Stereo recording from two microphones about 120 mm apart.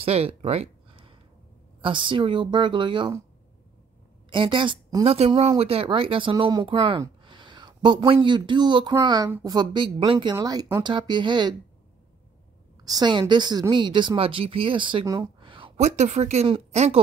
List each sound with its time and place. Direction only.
0.0 s a woman's voice: 55° right (ahead or behind)
4.3 s a woman's voice: 45° right (ahead or behind)
5.0 s a woman's voice: 55° right (ahead or behind)
10.3 s a woman's voice: 30° right (ahead or behind)
12.8 s a woman's voice: 35° right (ahead or behind)
15.4 s a sound: 45° right (ahead or behind)
15.8 s a woman's voice: 70° right (ahead or behind)